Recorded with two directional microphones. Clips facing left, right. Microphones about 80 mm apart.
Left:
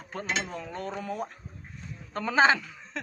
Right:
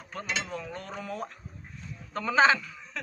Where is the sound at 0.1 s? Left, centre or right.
Left.